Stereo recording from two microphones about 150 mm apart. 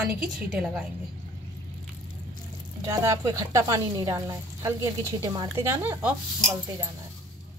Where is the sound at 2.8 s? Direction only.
20° right (ahead or behind).